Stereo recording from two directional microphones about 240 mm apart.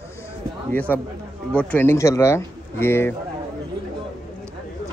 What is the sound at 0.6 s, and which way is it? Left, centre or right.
Speech, centre.